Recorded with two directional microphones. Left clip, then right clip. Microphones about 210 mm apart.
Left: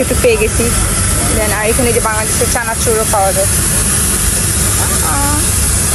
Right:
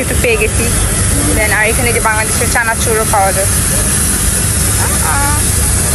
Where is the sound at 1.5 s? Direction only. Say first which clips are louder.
Right 1 dB; 15° left (ahead or behind).